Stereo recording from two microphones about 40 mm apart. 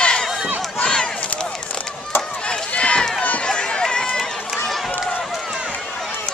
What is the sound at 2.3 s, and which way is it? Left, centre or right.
Run, left.